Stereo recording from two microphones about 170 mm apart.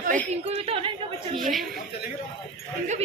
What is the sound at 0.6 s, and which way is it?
Speech, 35° right (ahead or behind).